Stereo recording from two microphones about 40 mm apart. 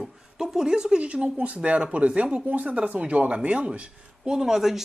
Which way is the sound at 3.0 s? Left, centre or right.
Right.